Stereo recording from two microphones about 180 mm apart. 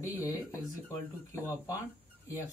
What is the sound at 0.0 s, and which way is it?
Speech, 20° left (ahead or behind).